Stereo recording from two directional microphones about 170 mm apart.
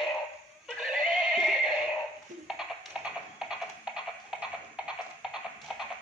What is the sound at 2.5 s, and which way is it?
Music, 5° right (ahead or behind).